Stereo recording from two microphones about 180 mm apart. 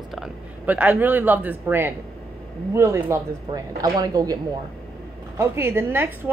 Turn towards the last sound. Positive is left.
turn(degrees=-10)  # may be behind; listen again after turning